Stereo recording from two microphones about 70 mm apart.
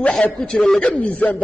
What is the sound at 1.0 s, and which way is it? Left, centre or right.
Speech, centre.